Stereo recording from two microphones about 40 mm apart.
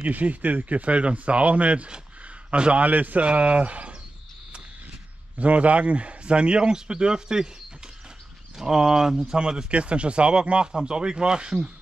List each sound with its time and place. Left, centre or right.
0.0 s speech: right
2.8 s speech: right
5.4 s speech: right; by 7.4 s centre
8.5 s speech: centre
9.7 s speech: right